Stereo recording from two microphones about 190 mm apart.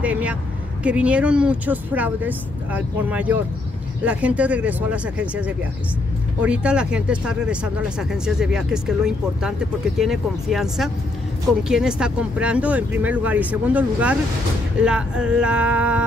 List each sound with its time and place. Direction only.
0.0 s speech: 5° right (ahead or behind)